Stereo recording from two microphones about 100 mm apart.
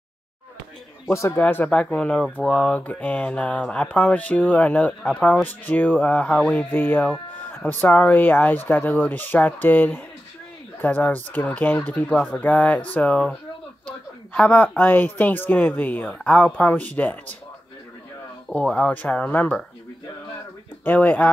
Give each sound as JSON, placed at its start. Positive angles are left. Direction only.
{"t": 1.0, "sound": "speech", "side_deg": 25}
{"t": 1.4, "sound": "speech", "side_deg": 15}
{"t": 18.5, "sound": "speech", "side_deg": 10}
{"t": 20.8, "sound": "speech", "side_deg": 20}